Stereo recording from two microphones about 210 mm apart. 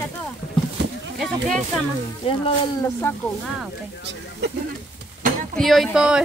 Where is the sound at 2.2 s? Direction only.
25° left (ahead or behind).